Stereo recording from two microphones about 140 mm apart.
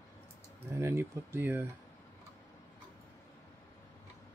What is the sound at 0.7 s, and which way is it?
Speech, 15° right (ahead or behind).